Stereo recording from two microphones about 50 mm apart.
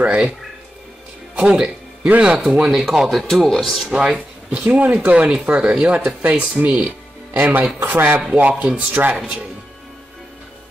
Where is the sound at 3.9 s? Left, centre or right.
Centre.